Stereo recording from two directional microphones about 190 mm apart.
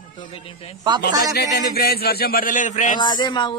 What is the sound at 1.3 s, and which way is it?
Speech, 55° left (ahead or behind).